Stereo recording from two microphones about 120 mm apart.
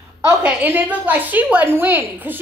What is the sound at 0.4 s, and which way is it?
A woman's voice, 10° right (ahead or behind).